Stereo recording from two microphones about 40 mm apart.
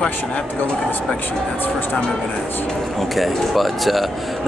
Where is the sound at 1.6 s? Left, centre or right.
Left.